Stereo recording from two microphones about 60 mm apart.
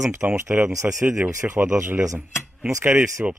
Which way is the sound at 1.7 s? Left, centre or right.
Right.